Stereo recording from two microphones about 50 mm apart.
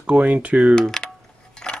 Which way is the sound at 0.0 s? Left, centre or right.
Right.